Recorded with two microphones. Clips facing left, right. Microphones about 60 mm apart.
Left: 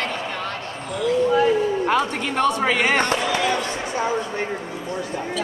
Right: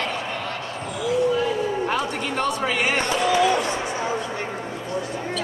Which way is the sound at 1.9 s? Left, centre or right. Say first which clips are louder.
Left 3 dB; left.